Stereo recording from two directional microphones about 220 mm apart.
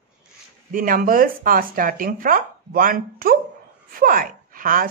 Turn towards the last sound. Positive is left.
turn(degrees=-40)  # may be behind; listen again after turning